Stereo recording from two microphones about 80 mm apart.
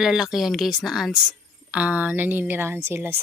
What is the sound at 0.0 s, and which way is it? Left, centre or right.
Speech, centre.